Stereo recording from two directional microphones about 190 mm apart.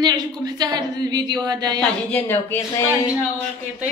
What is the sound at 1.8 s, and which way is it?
A woman's voice, 10° left (ahead or behind).